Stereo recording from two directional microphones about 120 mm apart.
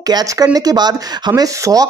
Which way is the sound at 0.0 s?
30° right (ahead or behind).